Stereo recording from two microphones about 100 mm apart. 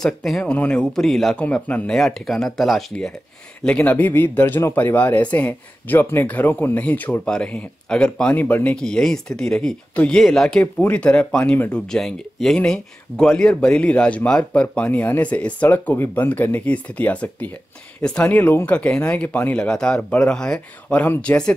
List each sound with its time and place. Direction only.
0.0 s speech: 5° left (ahead or behind)
1.4 s speech: 15° left (ahead or behind)
3.6 s speech: 15° left (ahead or behind)
8.8 s speech: 5° left (ahead or behind)
10.6 s speech: 15° left (ahead or behind)
19.6 s speech: 10° left (ahead or behind)